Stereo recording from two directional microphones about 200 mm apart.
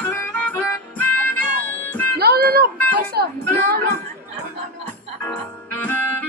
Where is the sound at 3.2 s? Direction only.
50° right (ahead or behind).